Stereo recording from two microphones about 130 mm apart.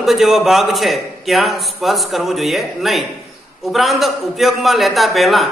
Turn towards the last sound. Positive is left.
turn(degrees=0)  # may be behind; listen again after turning